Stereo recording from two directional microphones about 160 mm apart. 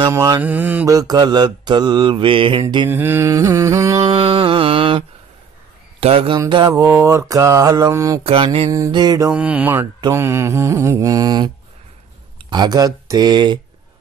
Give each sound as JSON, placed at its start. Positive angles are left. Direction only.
{"t": 0.1, "sound": "mantra", "side_deg": -25}
{"t": 0.4, "sound": "mantra", "side_deg": -10}
{"t": 0.9, "sound": "mantra", "side_deg": -25}
{"t": 2.9, "sound": "mantra", "side_deg": -15}
{"t": 4.1, "sound": "mantra", "side_deg": -35}
{"t": 5.9, "sound": "speech", "side_deg": -35}
{"t": 6.5, "sound": "mantra", "side_deg": -25}
{"t": 8.2, "sound": "mantra", "side_deg": -35}
{"t": 8.7, "sound": "mantra", "side_deg": -25}
{"t": 9.3, "sound": "mantra", "side_deg": -10}
{"t": 12.4, "sound": "speech", "side_deg": -25}